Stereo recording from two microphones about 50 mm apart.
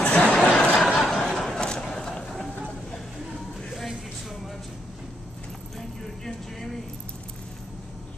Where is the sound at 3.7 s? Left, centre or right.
Centre.